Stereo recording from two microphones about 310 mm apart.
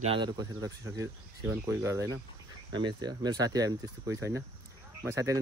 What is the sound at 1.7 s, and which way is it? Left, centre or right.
Speech, centre.